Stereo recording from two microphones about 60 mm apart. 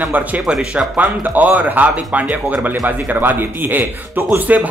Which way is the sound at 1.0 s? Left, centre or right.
Right.